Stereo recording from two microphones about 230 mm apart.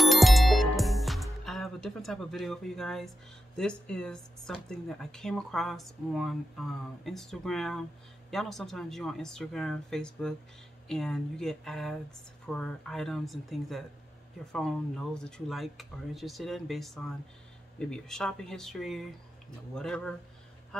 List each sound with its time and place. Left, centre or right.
0.0 s music: centre
3.5 s speech: centre